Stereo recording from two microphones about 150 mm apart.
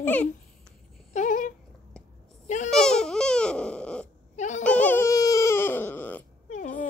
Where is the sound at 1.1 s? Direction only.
60° left (ahead or behind).